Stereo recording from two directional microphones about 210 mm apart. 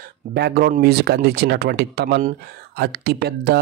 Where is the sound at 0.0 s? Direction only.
45° right (ahead or behind).